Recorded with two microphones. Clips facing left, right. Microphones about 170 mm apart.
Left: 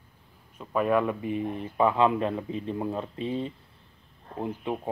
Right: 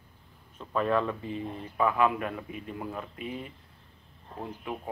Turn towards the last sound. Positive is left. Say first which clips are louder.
# left 5 dB
turn(degrees=25)  # may be behind; listen again after turning